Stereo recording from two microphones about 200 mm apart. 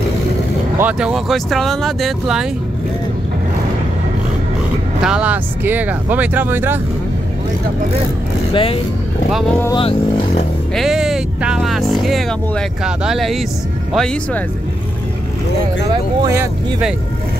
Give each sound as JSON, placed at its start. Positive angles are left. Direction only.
{"t": 0.7, "sound": "speech", "side_deg": -5}
{"t": 5.0, "sound": "speech", "side_deg": -5}
{"t": 8.5, "sound": "speech", "side_deg": 30}
{"t": 9.3, "sound": "speech", "side_deg": 5}
{"t": 9.7, "sound": "speech", "side_deg": 25}
{"t": 10.7, "sound": "speech", "side_deg": 0}
{"t": 15.9, "sound": "speech", "side_deg": -20}